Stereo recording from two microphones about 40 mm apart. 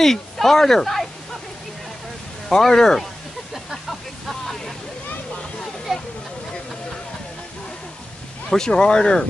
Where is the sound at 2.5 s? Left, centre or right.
Centre.